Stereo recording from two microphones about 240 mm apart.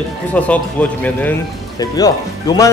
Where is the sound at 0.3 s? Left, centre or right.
Centre.